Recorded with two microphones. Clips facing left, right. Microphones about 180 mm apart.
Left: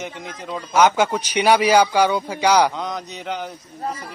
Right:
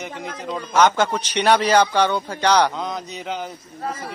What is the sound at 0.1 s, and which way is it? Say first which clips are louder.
Speech: right 3 dB; 55° right (ahead or behind).